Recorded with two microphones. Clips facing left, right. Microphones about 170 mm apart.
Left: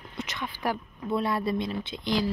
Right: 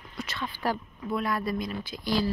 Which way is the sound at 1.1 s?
30° left (ahead or behind).